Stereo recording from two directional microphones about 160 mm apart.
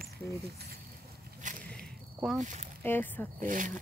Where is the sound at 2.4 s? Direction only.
50° right (ahead or behind).